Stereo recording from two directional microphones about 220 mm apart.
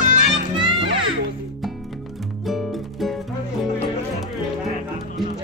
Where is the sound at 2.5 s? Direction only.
Centre (ahead or behind).